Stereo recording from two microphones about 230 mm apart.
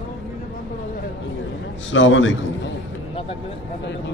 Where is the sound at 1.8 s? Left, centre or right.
Left.